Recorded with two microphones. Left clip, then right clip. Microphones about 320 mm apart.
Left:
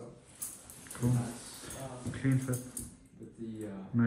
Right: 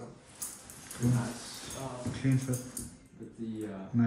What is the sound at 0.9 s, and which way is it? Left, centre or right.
Speech, centre.